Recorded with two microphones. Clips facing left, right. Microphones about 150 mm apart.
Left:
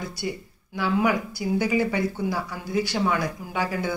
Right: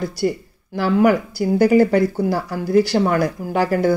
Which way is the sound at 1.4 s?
45° right (ahead or behind).